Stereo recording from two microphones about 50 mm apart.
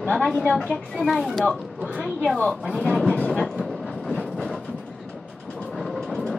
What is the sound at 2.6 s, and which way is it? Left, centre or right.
Speech, centre.